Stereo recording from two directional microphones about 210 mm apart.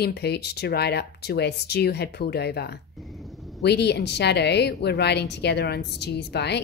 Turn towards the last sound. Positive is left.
turn(degrees=50)  # may be behind; listen again after turning